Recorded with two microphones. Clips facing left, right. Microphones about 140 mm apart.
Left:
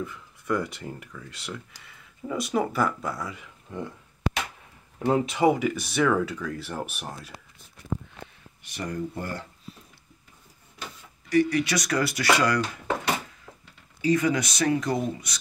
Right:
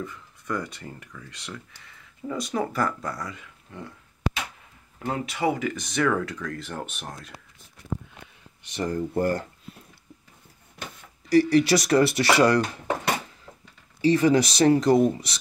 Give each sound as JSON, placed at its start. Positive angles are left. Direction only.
{"t": 0.0, "sound": "speech", "side_deg": 5}
{"t": 4.9, "sound": "speech", "side_deg": 20}
{"t": 8.6, "sound": "speech", "side_deg": -25}
{"t": 9.1, "sound": "speech", "side_deg": -45}
{"t": 11.2, "sound": "speech", "side_deg": -35}
{"t": 14.0, "sound": "speech", "side_deg": -30}